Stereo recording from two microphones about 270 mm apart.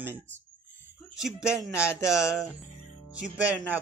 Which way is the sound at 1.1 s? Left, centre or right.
Centre.